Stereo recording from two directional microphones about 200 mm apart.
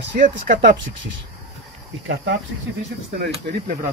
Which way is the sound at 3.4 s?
45° right (ahead or behind).